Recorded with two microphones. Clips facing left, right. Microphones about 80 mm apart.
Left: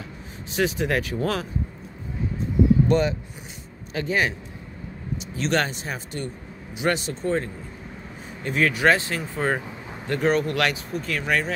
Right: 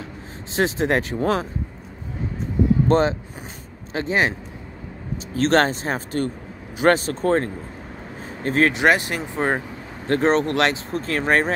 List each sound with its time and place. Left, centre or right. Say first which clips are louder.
0.6 s speech: right 3 dB; right
2.9 s speech: right 3 dB; right
5.3 s speech: right 7 dB; right
8.7 s speech: right 2 dB; right
10.0 s speech: right 3 dB; right